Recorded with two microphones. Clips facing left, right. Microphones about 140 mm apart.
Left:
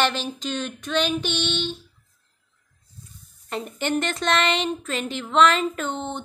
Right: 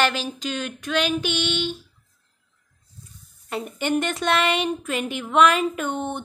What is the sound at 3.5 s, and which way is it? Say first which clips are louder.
A woman's voice: right 1 dB; 5° right (ahead or behind).